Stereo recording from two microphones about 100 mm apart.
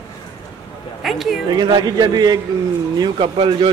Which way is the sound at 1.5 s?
45° right (ahead or behind).